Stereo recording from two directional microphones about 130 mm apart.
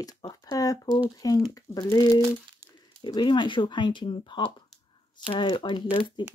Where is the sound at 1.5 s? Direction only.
30° left (ahead or behind).